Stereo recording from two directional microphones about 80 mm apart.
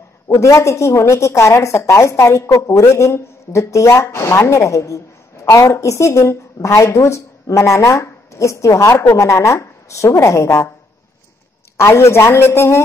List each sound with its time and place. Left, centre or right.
0.3 s a woman's voice: left
11.7 s a woman's voice: left